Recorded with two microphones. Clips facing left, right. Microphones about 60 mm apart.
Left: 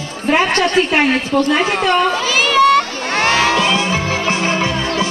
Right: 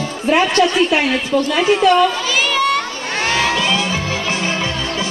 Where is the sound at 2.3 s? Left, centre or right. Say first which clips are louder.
Left 9 dB; left.